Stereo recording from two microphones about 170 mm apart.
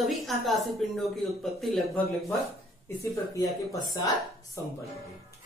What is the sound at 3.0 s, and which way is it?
Speech, 20° left (ahead or behind).